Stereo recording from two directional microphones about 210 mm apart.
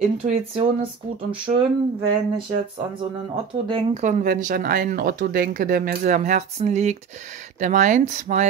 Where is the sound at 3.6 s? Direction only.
30° right (ahead or behind).